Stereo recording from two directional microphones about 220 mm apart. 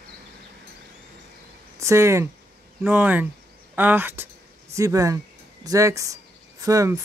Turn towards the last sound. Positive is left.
turn(degrees=-15)  # may be behind; listen again after turning